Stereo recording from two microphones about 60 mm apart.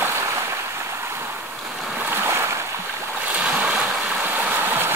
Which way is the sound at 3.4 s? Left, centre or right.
Right.